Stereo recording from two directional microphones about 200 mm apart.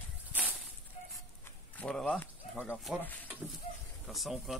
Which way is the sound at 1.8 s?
5° left (ahead or behind).